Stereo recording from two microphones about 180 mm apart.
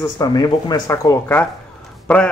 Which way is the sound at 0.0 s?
20° left (ahead or behind).